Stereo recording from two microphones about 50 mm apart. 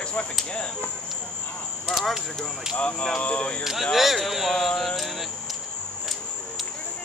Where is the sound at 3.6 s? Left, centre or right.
Centre.